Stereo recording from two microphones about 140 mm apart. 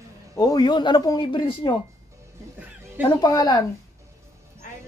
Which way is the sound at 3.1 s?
30° left (ahead or behind).